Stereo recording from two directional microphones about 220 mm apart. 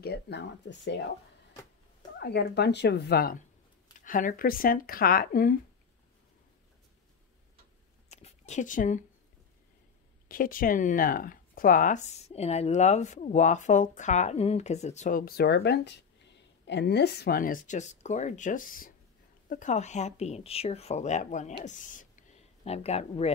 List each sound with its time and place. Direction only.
0.0 s speech: 50° left (ahead or behind)
2.1 s speech: 50° left (ahead or behind)
8.1 s a sound: 30° left (ahead or behind)
10.2 s speech: 40° left (ahead or behind)